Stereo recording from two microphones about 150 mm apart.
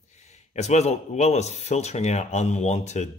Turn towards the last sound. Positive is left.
turn(degrees=50)  # may be behind; listen again after turning